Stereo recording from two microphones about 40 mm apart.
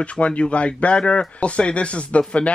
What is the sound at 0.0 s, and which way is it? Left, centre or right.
Speech, left.